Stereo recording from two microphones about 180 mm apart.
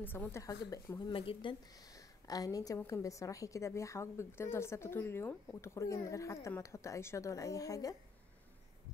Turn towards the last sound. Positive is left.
turn(degrees=20)  # may be behind; listen again after turning